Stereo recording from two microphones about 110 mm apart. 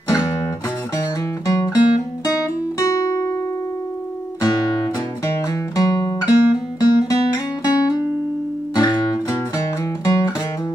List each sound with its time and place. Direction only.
0.9 s music: 35° left (ahead or behind)
4.4 s music: 30° left (ahead or behind)